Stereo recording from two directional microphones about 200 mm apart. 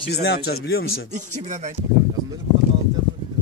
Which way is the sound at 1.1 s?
35° right (ahead or behind).